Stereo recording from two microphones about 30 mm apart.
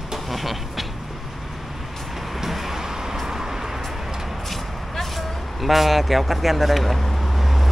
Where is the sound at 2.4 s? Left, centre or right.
Centre.